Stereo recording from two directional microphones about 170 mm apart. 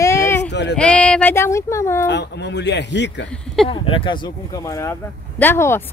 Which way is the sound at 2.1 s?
80° left.